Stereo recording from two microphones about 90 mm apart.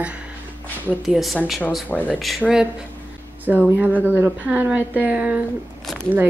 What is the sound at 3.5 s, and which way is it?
A woman's voice, 20° right (ahead or behind).